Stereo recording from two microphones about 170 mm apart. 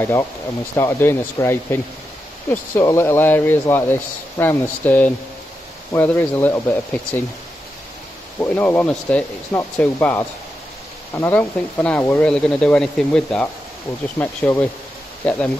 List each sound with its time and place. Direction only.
0.0 s speech: 15° left (ahead or behind)
8.4 s speech: 10° left (ahead or behind)